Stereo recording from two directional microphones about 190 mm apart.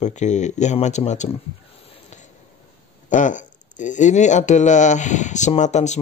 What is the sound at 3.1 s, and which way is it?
Speech, 40° left (ahead or behind).